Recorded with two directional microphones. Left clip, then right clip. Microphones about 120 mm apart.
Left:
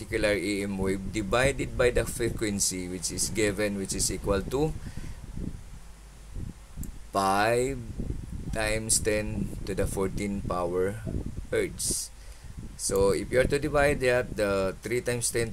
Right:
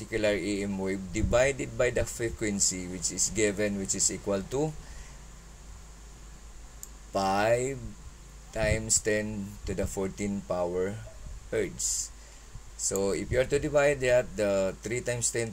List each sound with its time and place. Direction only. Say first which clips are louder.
0.0 s speech: left 1 dB; 35° left (ahead or behind)
7.1 s speech: left 1 dB; 35° left (ahead or behind)